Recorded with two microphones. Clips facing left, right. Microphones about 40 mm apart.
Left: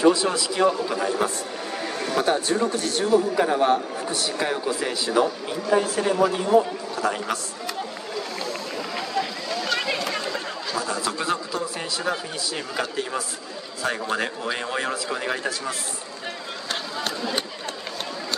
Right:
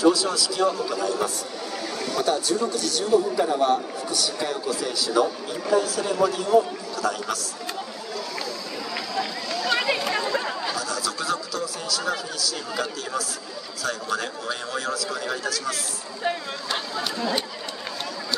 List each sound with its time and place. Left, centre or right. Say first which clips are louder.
0.0 s a man's voice: left 1 dB; left
8.9 s a sound: left 1 dB; left
9.7 s chatter: right 3 dB; centre
10.8 s a man's voice: left 2 dB; left